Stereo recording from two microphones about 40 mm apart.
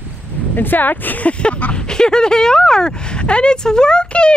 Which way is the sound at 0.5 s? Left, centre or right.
Left.